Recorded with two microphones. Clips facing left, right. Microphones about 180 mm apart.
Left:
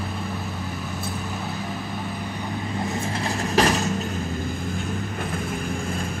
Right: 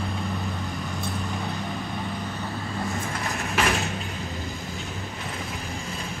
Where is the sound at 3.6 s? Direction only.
35° left (ahead or behind).